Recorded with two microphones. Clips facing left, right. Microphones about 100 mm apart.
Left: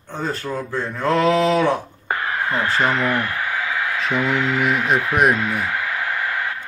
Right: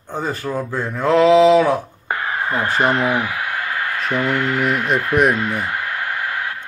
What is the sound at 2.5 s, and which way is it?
Speech, 15° right (ahead or behind).